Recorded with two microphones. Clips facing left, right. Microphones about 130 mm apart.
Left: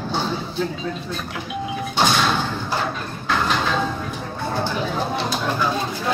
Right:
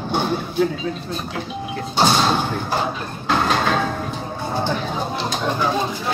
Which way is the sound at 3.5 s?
50° right (ahead or behind).